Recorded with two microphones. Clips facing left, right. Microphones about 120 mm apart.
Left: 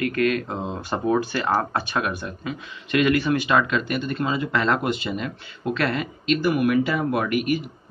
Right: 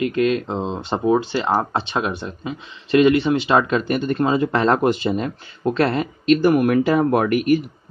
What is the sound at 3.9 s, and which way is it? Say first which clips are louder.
Speech: right 6 dB; 45° right (ahead or behind).